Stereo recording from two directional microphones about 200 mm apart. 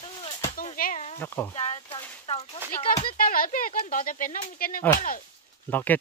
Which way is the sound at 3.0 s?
45° left (ahead or behind).